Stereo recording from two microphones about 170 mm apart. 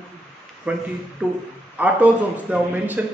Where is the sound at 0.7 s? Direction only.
10° right (ahead or behind).